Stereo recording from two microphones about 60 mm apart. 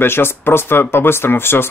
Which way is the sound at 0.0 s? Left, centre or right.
Left.